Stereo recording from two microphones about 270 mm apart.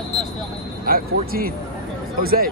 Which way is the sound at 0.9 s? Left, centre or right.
Right.